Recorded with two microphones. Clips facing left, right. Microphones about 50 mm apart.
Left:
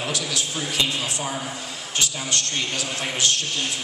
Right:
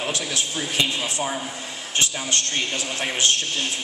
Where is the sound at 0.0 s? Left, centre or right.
Right.